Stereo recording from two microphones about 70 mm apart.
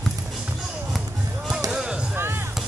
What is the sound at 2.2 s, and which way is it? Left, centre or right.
Music, right.